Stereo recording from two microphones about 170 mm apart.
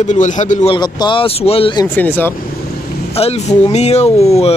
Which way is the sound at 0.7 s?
25° left (ahead or behind).